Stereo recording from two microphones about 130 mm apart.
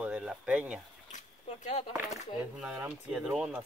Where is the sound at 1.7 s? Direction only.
60° left (ahead or behind).